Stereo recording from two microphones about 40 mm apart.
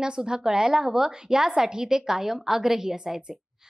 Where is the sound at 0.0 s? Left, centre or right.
Right.